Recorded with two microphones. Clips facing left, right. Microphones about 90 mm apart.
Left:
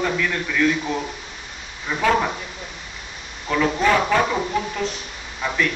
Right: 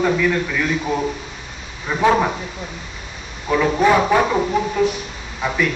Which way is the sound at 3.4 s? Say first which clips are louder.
Right 4 dB; 15° right (ahead or behind).